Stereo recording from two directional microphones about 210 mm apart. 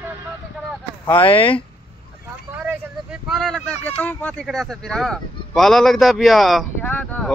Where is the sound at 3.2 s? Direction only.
Centre (ahead or behind).